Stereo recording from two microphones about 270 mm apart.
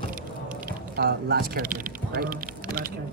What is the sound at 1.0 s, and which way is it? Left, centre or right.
Speech, right.